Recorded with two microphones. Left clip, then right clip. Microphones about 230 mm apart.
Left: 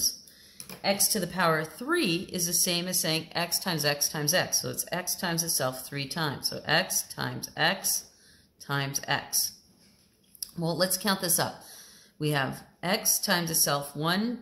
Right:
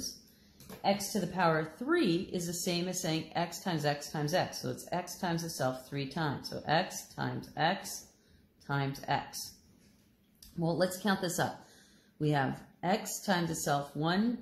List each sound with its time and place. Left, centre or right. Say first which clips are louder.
0.8 s speech: left 4 dB; left
10.6 s speech: left 3 dB; left